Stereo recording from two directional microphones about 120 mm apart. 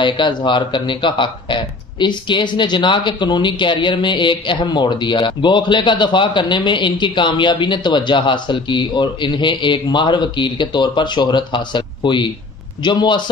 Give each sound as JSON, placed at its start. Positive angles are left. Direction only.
{"t": 0.0, "sound": "speech", "side_deg": 40}